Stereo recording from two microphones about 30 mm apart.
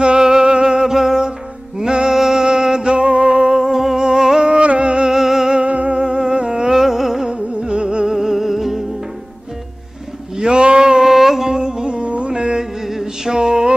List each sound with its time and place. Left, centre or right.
0.0 s music: right
4.5 s music: right
5.1 s music: centre
5.5 s music: right
5.9 s humming: right
6.7 s music: centre
7.2 s music: right
8.1 s music: centre
10.3 s a sound: right
11.1 s music: centre
11.4 s music: right
12.3 s carnatic music: right
12.8 s music: centre